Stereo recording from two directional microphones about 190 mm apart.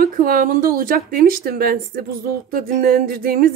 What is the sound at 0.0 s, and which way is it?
Speech, 50° right (ahead or behind).